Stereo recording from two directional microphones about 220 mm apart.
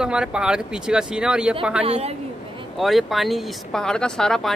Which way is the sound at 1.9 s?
30° right (ahead or behind).